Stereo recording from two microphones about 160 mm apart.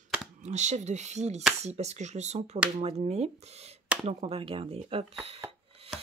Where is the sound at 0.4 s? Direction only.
45° right (ahead or behind).